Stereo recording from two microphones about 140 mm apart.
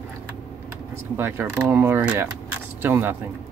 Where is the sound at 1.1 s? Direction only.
15° right (ahead or behind).